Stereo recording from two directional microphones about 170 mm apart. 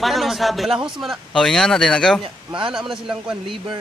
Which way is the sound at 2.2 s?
30° right (ahead or behind).